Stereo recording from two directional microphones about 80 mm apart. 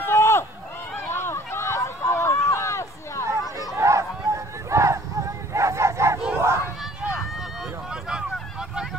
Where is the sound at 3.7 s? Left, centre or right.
Right.